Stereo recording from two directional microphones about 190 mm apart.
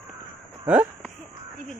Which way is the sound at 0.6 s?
5° right (ahead or behind).